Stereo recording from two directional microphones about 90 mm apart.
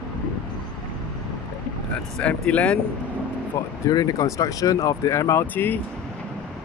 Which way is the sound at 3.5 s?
35° left (ahead or behind).